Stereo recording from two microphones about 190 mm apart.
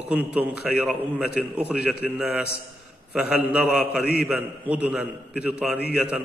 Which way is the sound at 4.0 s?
55° left (ahead or behind).